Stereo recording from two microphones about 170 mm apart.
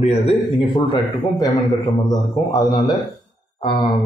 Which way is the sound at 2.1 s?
25° left (ahead or behind).